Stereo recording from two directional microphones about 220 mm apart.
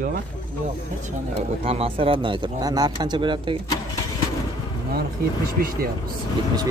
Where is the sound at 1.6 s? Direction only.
25° right (ahead or behind).